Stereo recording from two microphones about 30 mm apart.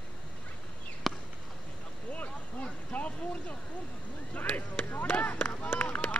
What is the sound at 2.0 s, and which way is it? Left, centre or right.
Vehicle, left.